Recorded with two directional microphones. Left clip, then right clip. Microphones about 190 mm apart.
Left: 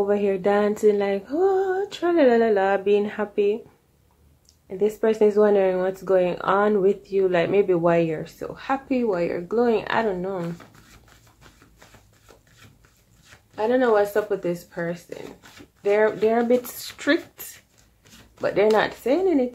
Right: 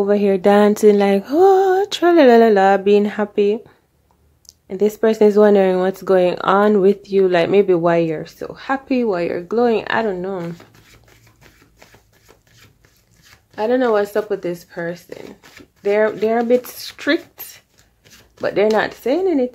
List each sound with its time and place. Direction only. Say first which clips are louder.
0.0 s music: right 6 dB; 40° right (ahead or behind)
4.6 s speech: right 5 dB; 45° right (ahead or behind)
13.6 s speech: right 3 dB; 35° right (ahead or behind)
18.4 s speech: right 3 dB; 35° right (ahead or behind)